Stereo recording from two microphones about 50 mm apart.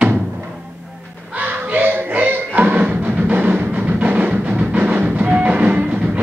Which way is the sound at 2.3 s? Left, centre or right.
Right.